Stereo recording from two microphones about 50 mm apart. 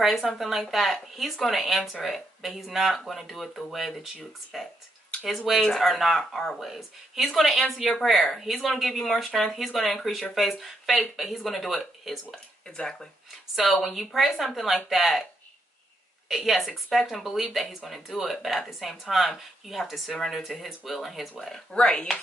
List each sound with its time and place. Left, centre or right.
0.0 s speech: centre
12.6 s speech: centre
13.6 s speech: centre
16.3 s speech: centre
21.7 s speech: left